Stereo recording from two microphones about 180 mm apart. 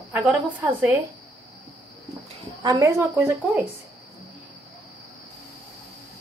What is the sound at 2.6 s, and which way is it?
Speech, 20° right (ahead or behind).